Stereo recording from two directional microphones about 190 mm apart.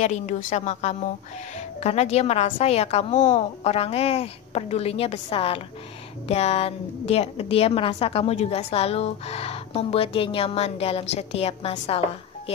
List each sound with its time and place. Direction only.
0.0 s a woman's voice: 40° left (ahead or behind)